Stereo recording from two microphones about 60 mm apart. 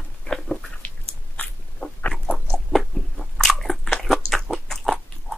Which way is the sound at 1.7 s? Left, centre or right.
Centre.